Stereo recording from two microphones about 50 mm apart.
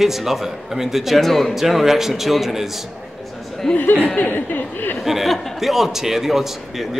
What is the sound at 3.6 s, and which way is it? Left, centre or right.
Speech, centre.